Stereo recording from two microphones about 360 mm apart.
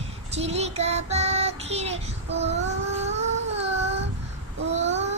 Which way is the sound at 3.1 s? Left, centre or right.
Centre.